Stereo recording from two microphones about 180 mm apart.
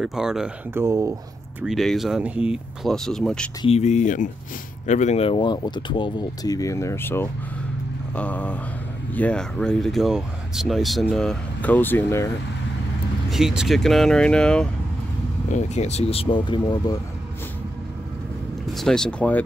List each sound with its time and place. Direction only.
0.0 s speech: 5° right (ahead or behind)
0.8 s speech: 15° right (ahead or behind)
1.6 s speech: centre (ahead or behind)
3.6 s speech: 35° left (ahead or behind); by 7.2 s 10° left (ahead or behind)
8.1 s vehicle: 10° left (ahead or behind)
9.1 s speech: 5° left (ahead or behind)
13.3 s speech: 5° right (ahead or behind)
15.5 s speech: 40° left (ahead or behind)
18.7 s speech: centre (ahead or behind)